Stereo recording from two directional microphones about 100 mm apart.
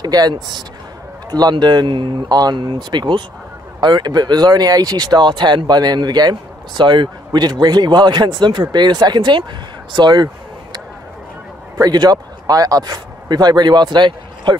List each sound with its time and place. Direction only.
0.0 s speech: 45° right (ahead or behind)
9.9 s a sound: 45° right (ahead or behind)
11.8 s speech: 40° right (ahead or behind)